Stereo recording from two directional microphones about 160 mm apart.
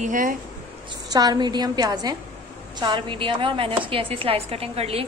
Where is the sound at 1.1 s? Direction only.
25° right (ahead or behind).